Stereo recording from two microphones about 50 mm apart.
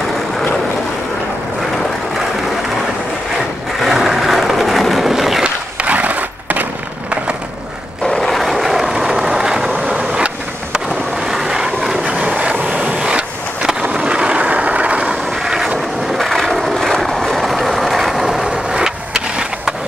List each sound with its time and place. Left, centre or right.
3.8 s vehicle: centre
5.4 s skateboard: right
8.1 s vehicle: centre
9.8 s vehicle: right
11.2 s vehicle: centre; by 12.9 s right
13.0 s vehicle: centre
15.0 s vehicle: centre
16.2 s vehicle: centre